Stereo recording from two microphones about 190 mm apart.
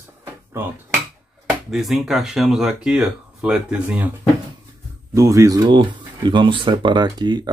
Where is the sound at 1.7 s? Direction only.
Centre (ahead or behind).